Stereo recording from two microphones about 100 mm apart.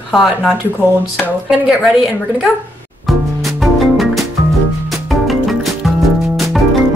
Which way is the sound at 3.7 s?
Centre (ahead or behind).